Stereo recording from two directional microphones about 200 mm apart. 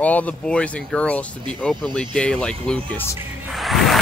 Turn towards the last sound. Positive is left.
turn(degrees=0)  # may be behind; listen again after turning